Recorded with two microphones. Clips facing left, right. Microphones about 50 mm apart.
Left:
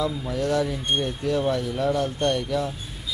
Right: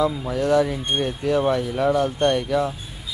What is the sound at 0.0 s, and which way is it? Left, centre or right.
Speech, right.